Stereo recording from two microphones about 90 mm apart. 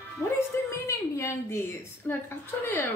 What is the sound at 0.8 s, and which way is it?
A woman's voice, 30° left (ahead or behind).